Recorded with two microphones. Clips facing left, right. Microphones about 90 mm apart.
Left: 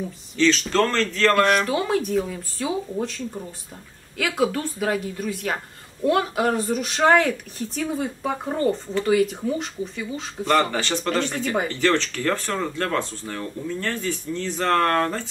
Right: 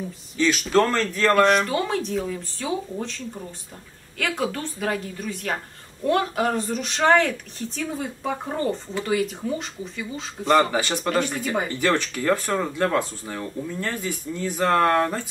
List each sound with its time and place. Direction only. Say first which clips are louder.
0.4 s speech: even; 10° right (ahead or behind)
1.3 s speech: right 3 dB; centre (ahead or behind)